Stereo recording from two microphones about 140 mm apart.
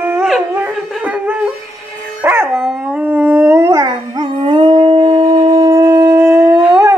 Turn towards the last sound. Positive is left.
turn(degrees=-10)  # may be behind; listen again after turning